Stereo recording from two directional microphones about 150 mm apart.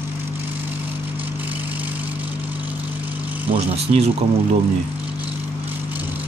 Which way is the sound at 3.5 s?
40° right (ahead or behind).